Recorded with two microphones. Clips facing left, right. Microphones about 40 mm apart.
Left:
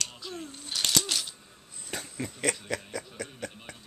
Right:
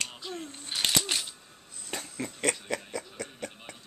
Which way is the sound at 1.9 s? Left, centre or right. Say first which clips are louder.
Even; centre.